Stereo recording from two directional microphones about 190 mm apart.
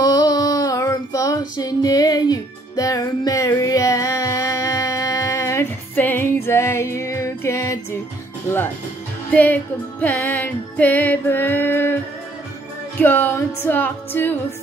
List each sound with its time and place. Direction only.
0.0 s female singing: 20° left (ahead or behind)
1.6 s music: 20° left (ahead or behind)
9.3 s music: 10° left (ahead or behind)
13.0 s music: 10° left (ahead or behind)